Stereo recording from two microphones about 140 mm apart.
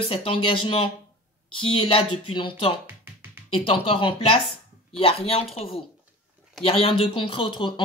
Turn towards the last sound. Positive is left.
turn(degrees=35)  # may be behind; listen again after turning